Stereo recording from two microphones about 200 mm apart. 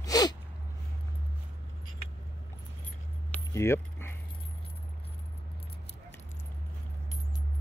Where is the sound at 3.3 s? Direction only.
15° left (ahead or behind).